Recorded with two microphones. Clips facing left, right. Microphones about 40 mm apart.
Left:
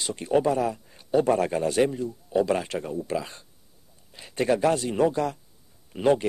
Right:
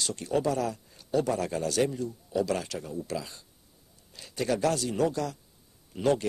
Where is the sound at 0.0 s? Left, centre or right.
Left.